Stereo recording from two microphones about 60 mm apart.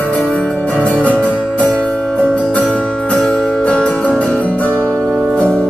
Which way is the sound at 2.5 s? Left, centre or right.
Left.